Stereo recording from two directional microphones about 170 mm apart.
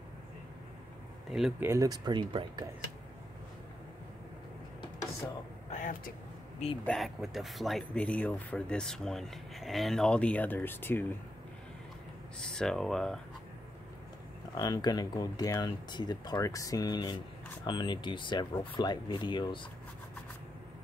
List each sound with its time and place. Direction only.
1.6 s speech: 20° right (ahead or behind)
5.7 s vehicle: 50° left (ahead or behind)
6.9 s speech: centre (ahead or behind)
12.4 s speech: 5° left (ahead or behind)
14.6 s speech: 20° left (ahead or behind)